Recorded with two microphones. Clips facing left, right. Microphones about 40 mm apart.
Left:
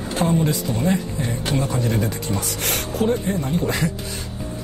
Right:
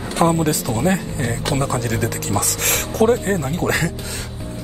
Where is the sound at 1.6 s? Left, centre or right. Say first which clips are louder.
Right 1 dB; right.